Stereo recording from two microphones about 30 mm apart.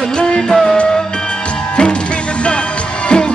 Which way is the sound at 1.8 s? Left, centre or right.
Left.